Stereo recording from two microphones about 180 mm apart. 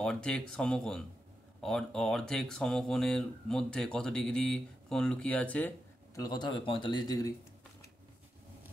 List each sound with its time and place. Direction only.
0.0 s speech: 5° left (ahead or behind)
6.1 s speech: 20° left (ahead or behind)